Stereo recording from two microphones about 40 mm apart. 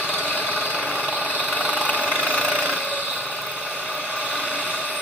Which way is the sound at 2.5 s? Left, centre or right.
Left.